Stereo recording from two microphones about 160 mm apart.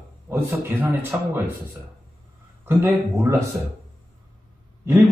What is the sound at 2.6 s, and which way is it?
Speech, 15° right (ahead or behind).